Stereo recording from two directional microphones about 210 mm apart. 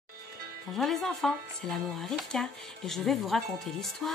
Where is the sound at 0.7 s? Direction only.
Centre (ahead or behind).